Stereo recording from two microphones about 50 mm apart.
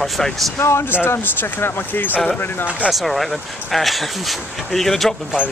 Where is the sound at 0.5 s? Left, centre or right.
Left.